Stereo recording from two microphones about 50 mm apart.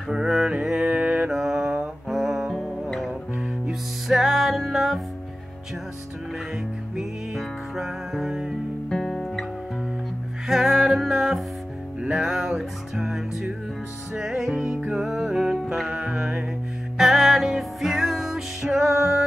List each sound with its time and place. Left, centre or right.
0.1 s music: centre
0.8 s mantra: right
1.3 s mantra: centre
2.0 s music: centre
3.1 s music: centre
4.1 s music: centre
7.0 s music: centre
8.8 s music: centre
10.5 s music: centre
14.8 s music: centre
16.9 s music: centre